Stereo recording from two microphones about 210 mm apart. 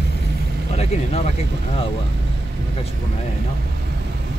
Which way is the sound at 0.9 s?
30° left (ahead or behind).